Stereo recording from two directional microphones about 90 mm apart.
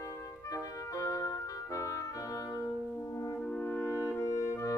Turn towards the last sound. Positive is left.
turn(degrees=35)  # may be behind; listen again after turning